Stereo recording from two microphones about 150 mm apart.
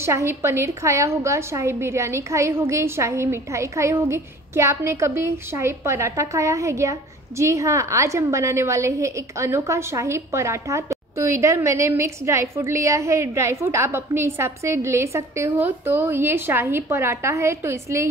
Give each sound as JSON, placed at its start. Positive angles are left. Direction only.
{"t": 0.0, "sound": "a woman's voice", "side_deg": -15}